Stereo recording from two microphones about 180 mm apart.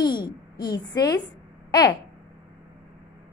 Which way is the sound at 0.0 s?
25° left (ahead or behind).